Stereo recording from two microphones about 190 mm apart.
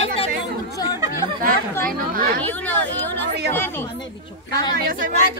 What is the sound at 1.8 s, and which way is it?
Speech, 50° right (ahead or behind).